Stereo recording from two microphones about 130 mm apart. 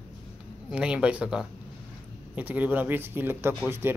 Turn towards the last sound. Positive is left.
turn(degrees=-20)  # may be behind; listen again after turning